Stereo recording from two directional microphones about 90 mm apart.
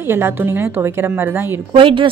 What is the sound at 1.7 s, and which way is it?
Speech, 70° right (ahead or behind).